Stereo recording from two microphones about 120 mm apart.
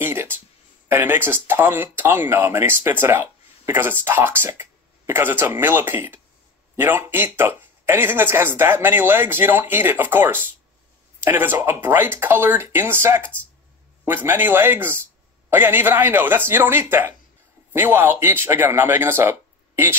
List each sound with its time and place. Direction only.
0.0 s music: 20° right (ahead or behind)
0.8 s speech: 15° right (ahead or behind)